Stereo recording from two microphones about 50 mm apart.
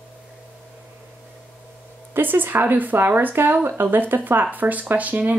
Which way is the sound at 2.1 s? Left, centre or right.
Right.